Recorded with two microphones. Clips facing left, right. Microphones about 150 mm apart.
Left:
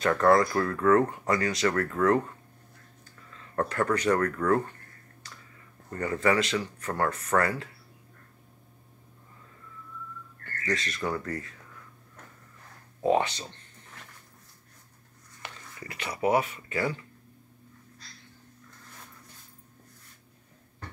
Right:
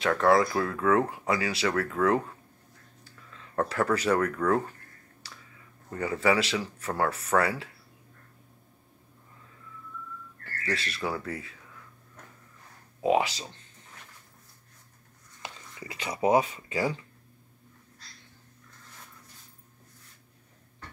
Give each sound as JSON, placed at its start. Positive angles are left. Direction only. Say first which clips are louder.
{"t": 0.0, "sound": "speech", "louder": "left 1 dB", "side_deg": 0}
{"t": 3.5, "sound": "speech", "louder": "even", "side_deg": -5}
{"t": 5.9, "sound": "speech", "louder": "even", "side_deg": -5}
{"t": 10.4, "sound": "speech", "louder": "left 2 dB", "side_deg": -5}
{"t": 13.0, "sound": "speech", "louder": "even", "side_deg": -10}
{"t": 15.4, "sound": "speech", "louder": "right 1 dB", "side_deg": -20}